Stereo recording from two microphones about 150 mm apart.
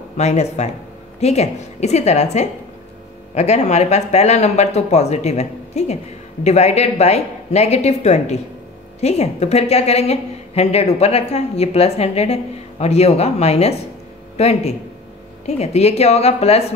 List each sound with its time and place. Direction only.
0.2 s a woman's voice: 50° left (ahead or behind)